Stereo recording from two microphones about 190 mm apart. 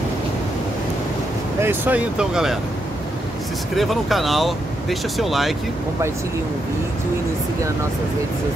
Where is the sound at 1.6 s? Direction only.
10° right (ahead or behind).